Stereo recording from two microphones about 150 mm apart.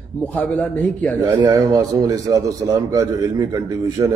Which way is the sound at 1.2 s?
25° right (ahead or behind).